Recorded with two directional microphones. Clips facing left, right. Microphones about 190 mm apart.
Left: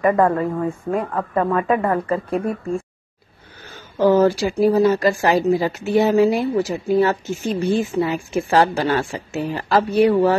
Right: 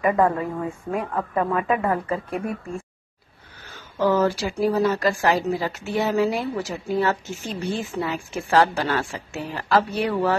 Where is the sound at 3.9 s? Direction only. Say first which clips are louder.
Left 5 dB; 30° left (ahead or behind).